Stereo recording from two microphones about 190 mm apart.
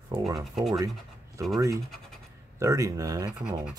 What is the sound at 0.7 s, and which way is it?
Speech, 20° right (ahead or behind).